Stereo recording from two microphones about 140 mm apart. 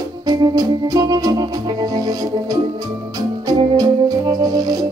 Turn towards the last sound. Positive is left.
turn(degrees=-25)  # may be behind; listen again after turning